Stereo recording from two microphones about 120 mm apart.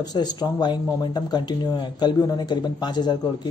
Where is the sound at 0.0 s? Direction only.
35° left (ahead or behind).